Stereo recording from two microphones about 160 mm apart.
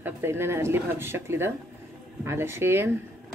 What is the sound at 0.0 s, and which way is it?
Speech, 15° right (ahead or behind).